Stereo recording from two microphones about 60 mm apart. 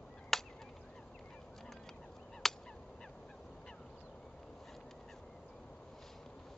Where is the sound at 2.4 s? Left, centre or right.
Centre.